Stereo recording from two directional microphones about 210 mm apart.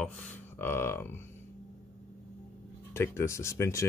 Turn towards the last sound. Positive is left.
turn(degrees=15)  # may be behind; listen again after turning